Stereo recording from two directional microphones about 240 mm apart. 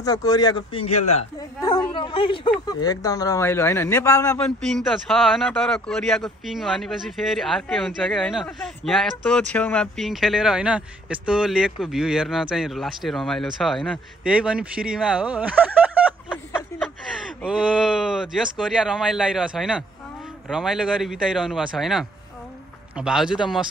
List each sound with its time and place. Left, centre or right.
0.0 s speech: centre
1.6 s a sound: centre
2.7 s speech: centre
17.5 s speech: centre